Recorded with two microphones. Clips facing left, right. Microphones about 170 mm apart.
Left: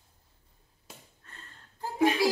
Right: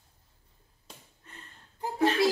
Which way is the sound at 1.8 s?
20° right (ahead or behind).